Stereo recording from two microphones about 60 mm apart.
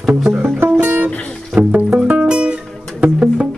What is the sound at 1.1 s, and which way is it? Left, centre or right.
Music, centre.